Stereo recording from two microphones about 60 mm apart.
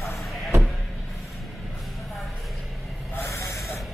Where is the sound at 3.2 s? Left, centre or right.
Left.